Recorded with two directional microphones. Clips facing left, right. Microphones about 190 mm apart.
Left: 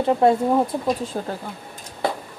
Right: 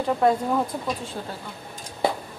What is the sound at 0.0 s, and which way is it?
Speech, 25° left (ahead or behind).